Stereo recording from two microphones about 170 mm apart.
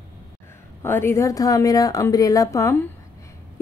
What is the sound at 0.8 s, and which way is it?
A woman's voice, 15° left (ahead or behind).